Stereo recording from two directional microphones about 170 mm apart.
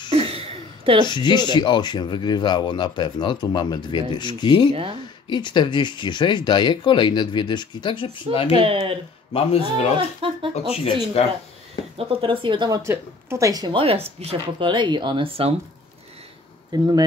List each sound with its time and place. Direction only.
0.1 s a sound: 35° right (ahead or behind)
1.0 s speech: 25° left (ahead or behind)
8.5 s speech: 30° right (ahead or behind)
9.3 s a man's voice: 35° left (ahead or behind)
9.9 s speech: 30° right (ahead or behind)
12.0 s speech: 30° right (ahead or behind)
16.7 s speech: 25° right (ahead or behind)